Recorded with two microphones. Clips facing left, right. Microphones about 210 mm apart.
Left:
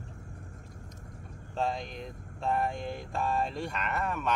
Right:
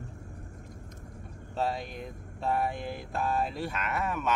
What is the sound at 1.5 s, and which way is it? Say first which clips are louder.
Mantra: right 1 dB; 5° right (ahead or behind).